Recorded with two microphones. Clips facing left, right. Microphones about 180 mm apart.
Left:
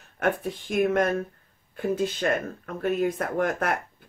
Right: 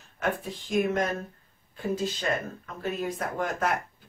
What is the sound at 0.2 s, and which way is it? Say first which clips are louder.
Speech: left 4 dB; 55° left (ahead or behind).